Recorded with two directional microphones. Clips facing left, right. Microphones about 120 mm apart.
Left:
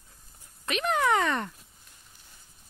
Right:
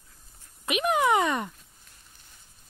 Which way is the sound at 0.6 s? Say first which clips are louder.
Right 2 dB; 10° right (ahead or behind).